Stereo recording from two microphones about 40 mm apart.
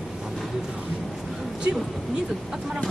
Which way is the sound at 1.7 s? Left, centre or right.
Right.